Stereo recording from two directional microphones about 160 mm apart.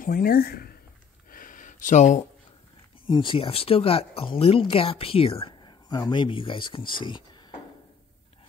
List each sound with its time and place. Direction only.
0.0 s speech: 65° left (ahead or behind)
1.3 s a sound: 55° left (ahead or behind)
3.1 s a woman's voice: 30° left (ahead or behind)